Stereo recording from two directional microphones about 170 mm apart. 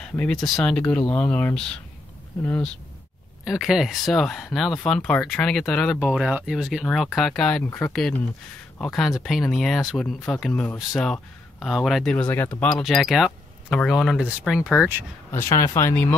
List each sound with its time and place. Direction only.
0.0 s speech: 5° left (ahead or behind); by 15.0 s 10° right (ahead or behind)
15.3 s speech: 15° left (ahead or behind)